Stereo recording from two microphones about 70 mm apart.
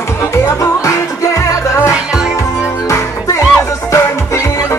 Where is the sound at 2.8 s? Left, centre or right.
Left.